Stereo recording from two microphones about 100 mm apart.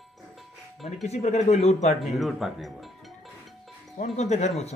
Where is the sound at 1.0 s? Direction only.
90° left.